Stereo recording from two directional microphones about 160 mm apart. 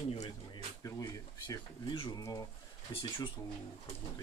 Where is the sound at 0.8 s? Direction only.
20° left (ahead or behind).